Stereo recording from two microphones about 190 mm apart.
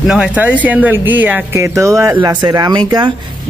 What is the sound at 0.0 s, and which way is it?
Speech, 5° right (ahead or behind).